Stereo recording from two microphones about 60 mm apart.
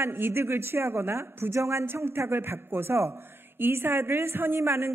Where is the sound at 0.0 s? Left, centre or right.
Right.